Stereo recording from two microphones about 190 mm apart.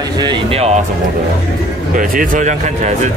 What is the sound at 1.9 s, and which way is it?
Speech, 45° right (ahead or behind).